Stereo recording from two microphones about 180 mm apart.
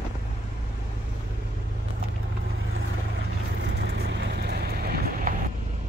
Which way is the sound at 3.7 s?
65° right (ahead or behind).